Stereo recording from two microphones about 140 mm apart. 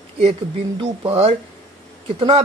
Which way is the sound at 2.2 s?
40° right (ahead or behind).